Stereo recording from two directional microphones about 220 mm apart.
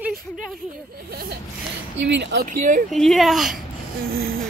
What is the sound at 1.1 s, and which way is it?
Speech, 45° right (ahead or behind).